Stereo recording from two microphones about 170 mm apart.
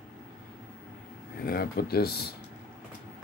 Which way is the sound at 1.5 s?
65° left (ahead or behind).